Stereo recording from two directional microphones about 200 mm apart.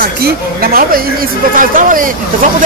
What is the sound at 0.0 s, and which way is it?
A woman's voice, 50° right (ahead or behind).